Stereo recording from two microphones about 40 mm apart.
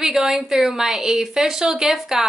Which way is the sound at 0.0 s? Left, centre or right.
Centre.